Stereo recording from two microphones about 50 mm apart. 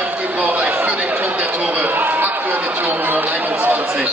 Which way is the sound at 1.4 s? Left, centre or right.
Right.